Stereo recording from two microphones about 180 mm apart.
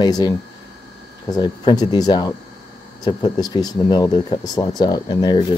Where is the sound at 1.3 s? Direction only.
25° left (ahead or behind).